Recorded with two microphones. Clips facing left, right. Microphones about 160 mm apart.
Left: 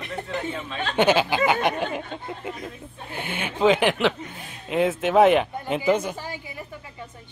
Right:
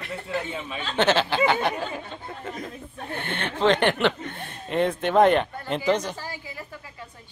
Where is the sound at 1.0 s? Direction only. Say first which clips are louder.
Left 2 dB; 10° left (ahead or behind).